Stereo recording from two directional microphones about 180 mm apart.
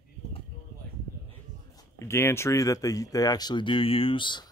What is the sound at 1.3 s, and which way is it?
Speech, 15° left (ahead or behind).